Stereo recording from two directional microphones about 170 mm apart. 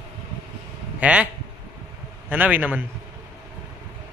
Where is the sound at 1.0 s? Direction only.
5° right (ahead or behind).